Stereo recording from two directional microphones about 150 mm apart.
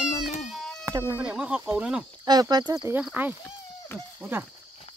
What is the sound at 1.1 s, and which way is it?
Speech, 5° right (ahead or behind).